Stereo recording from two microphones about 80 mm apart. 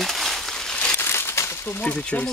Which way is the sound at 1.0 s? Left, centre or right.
Left.